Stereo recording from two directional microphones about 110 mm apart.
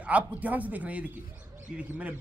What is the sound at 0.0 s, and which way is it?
A man's voice, 15° right (ahead or behind).